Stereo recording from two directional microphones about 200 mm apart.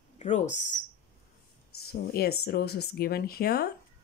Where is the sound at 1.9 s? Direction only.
50° left (ahead or behind).